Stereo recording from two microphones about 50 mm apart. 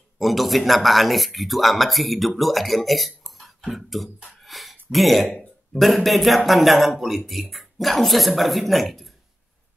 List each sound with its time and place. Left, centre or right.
0.2 s speech: centre